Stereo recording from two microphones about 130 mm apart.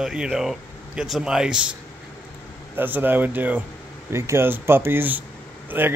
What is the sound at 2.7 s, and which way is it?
A man's voice, 15° right (ahead or behind).